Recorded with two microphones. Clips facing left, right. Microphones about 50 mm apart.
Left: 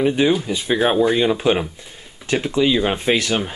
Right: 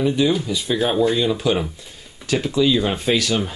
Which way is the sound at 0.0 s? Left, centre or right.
Left.